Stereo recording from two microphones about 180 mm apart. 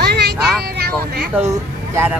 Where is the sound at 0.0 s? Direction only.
65° right (ahead or behind).